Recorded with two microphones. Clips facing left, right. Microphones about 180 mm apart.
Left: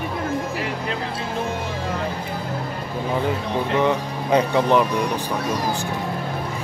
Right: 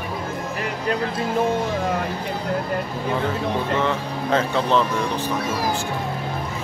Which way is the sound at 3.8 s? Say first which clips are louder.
Left 2 dB; 15° left (ahead or behind).